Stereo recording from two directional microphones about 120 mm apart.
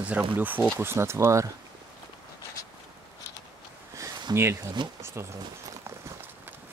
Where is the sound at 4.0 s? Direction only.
35° right (ahead or behind).